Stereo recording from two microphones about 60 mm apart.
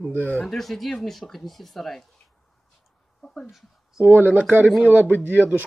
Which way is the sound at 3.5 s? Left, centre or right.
Centre.